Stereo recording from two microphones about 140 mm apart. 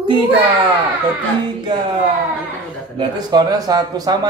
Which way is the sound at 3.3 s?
30° right (ahead or behind).